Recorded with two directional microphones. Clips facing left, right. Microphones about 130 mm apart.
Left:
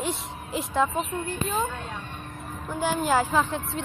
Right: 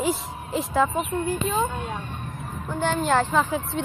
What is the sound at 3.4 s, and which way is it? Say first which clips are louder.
Speech: right 3 dB; 5° right (ahead or behind).